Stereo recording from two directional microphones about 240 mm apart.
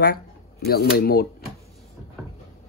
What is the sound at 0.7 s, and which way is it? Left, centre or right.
Speech, left.